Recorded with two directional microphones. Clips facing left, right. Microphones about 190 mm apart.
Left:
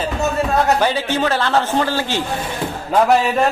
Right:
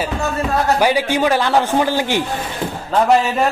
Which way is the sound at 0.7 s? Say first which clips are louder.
Right 2 dB; 10° right (ahead or behind).